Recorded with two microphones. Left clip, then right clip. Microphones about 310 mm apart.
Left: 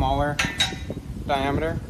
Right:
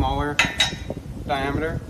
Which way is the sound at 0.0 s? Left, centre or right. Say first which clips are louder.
Left 1 dB; left.